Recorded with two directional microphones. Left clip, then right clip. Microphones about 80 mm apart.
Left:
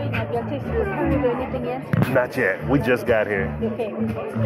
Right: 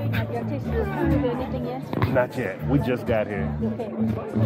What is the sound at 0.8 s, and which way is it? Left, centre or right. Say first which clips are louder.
Chatter: left 2 dB; right.